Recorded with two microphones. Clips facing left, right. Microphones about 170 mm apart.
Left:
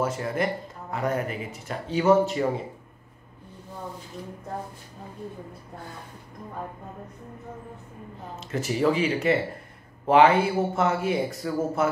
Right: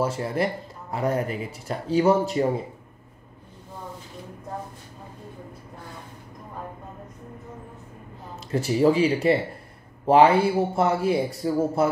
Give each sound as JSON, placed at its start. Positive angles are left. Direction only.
{"t": 0.0, "sound": "a man's voice", "side_deg": -30}
{"t": 8.5, "sound": "a man's voice", "side_deg": -30}